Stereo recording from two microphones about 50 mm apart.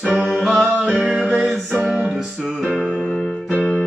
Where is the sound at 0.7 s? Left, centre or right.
Right.